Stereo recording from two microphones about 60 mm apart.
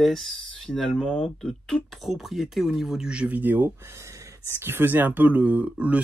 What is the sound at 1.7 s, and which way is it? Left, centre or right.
Speech, left.